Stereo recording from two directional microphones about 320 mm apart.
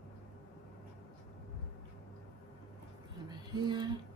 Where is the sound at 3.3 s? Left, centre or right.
Centre.